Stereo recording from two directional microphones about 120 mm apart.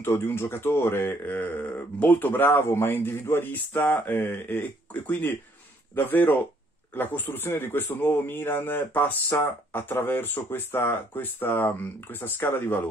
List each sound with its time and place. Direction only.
0.0 s speech: 20° left (ahead or behind)